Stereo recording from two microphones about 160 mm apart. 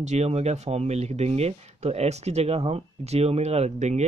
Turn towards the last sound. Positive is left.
turn(degrees=-45)  # may be behind; listen again after turning